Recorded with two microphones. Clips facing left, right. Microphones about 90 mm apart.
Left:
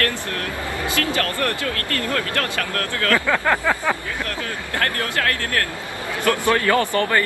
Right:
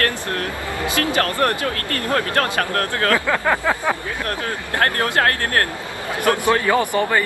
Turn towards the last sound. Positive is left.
turn(degrees=-15)  # may be behind; listen again after turning